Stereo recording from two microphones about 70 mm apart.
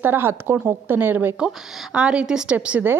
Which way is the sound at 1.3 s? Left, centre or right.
Centre.